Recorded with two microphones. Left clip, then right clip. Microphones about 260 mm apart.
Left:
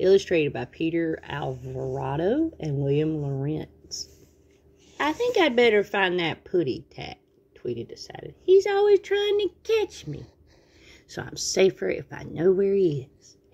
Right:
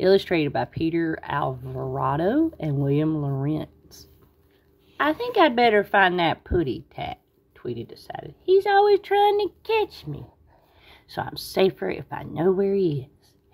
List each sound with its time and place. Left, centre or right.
0.0 s speech: centre